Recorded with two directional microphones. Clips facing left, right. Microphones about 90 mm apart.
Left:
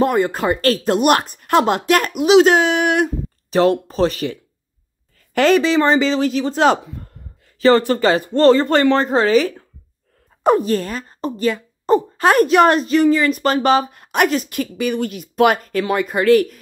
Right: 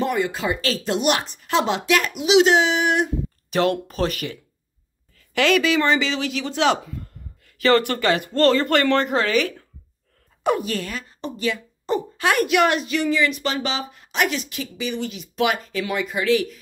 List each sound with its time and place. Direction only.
0.0 s a woman's voice: 45° left (ahead or behind)
3.4 s a man's voice: 35° left (ahead or behind)
7.5 s a woman's voice: 30° left (ahead or behind); by 16.5 s 50° left (ahead or behind)